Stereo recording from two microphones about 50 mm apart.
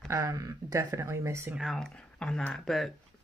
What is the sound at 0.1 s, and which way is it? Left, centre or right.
Speech, right.